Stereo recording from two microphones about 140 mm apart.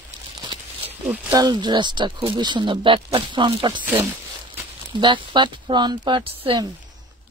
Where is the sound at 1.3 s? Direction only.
30° right (ahead or behind).